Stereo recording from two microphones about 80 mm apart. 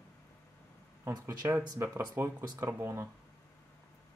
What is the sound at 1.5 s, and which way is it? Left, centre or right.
Speech, right.